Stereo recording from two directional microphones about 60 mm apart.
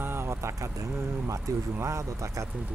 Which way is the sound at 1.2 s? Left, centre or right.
Right.